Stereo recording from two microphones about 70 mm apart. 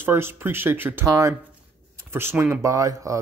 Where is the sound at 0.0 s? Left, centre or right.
Right.